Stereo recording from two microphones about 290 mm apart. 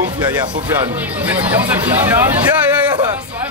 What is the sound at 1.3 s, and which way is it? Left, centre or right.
Speech, centre.